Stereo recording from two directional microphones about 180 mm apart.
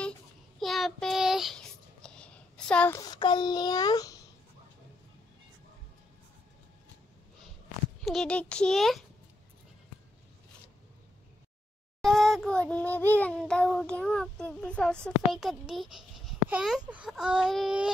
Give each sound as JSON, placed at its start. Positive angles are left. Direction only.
{"t": 0.6, "sound": "child singing", "side_deg": 0}
{"t": 3.0, "sound": "a child's voice", "side_deg": 25}
{"t": 8.0, "sound": "child singing", "side_deg": 0}
{"t": 12.0, "sound": "child singing", "side_deg": 0}